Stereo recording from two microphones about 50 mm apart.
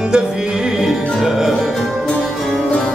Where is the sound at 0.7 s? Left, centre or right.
Centre.